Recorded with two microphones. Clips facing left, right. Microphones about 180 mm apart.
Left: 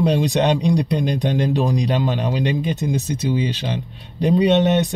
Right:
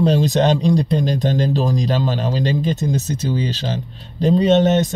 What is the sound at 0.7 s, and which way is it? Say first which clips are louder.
Speech: right 2 dB; 15° left (ahead or behind).